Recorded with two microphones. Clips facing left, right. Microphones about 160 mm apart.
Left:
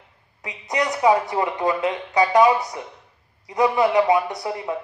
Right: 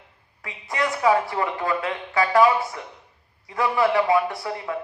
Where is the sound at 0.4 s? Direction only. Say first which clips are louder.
Left 2 dB; 20° left (ahead or behind).